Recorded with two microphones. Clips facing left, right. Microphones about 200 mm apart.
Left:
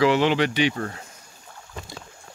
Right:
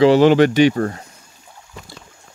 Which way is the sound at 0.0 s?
40° right (ahead or behind).